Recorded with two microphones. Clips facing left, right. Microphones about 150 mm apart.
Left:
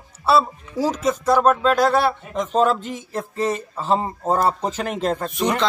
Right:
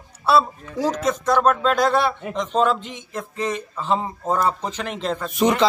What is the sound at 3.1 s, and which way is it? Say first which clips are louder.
Speech: left 2 dB; 40° left (ahead or behind).